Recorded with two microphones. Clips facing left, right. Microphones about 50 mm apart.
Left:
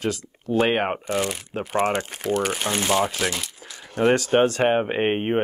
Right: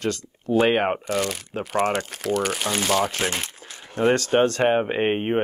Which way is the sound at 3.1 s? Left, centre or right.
Right.